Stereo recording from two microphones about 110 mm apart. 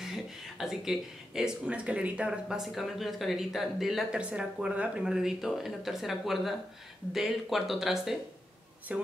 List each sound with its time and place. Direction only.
0.0 s speech: 5° right (ahead or behind)